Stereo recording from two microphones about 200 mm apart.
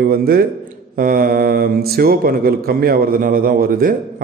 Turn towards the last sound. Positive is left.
turn(degrees=-45)  # may be behind; listen again after turning